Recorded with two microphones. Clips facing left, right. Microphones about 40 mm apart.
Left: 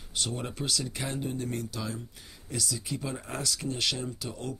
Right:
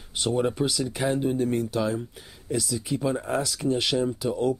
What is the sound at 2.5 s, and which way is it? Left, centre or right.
Speech, centre.